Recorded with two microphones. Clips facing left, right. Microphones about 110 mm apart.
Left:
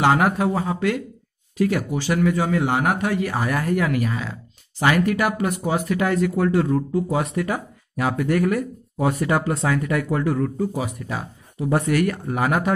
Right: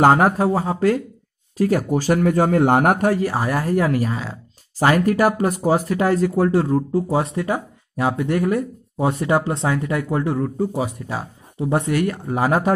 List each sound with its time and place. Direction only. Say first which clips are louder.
0.0 s speech: right 4 dB; 40° right (ahead or behind)